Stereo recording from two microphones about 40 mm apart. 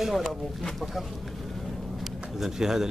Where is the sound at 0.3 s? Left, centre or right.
Centre.